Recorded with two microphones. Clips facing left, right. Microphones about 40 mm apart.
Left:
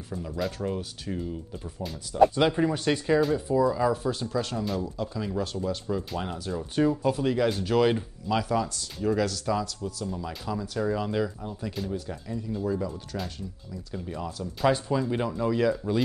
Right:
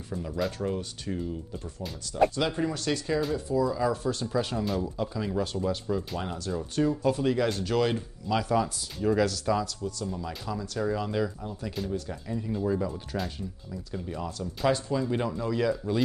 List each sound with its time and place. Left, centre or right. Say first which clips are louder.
0.1 s speech: right 1 dB; centre
2.3 s speech: left 5 dB; centre
4.3 s speech: right 1 dB; centre
7.1 s speech: left 1 dB; centre
8.4 s speech: right 1 dB; centre
13.9 s speech: even; centre